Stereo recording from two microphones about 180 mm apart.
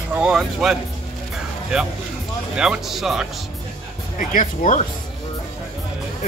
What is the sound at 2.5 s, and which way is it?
Speech, 5° right (ahead or behind).